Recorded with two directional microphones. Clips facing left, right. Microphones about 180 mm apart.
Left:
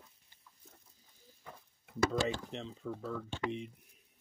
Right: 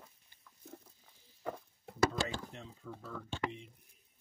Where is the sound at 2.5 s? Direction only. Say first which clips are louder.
Left 7 dB; 90° left.